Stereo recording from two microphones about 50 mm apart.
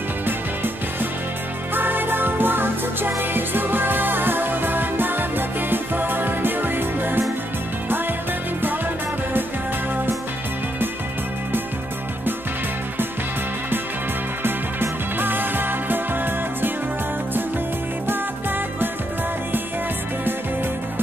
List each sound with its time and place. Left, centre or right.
1.7 s music: right
14.4 s music: right